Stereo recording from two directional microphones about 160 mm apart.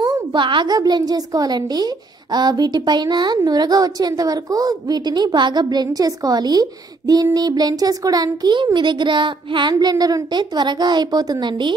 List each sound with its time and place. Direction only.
0.0 s a child's voice: 30° right (ahead or behind)